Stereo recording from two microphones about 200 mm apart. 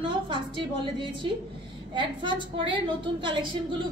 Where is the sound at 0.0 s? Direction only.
25° right (ahead or behind).